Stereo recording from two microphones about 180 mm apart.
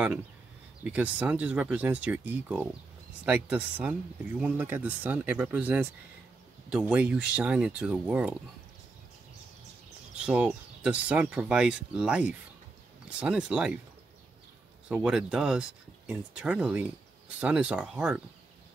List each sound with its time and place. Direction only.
0.8 s speech: 10° right (ahead or behind)
10.1 s speech: 5° right (ahead or behind)
14.9 s speech: 5° right (ahead or behind)